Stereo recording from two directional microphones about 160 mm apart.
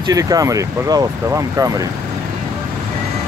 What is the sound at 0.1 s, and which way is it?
Speech, 20° right (ahead or behind).